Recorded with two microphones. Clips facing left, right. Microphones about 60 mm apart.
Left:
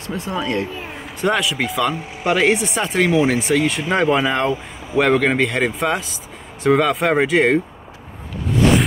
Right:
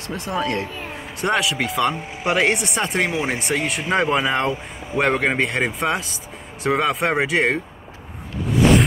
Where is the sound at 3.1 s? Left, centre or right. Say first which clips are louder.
Left 7 dB; right.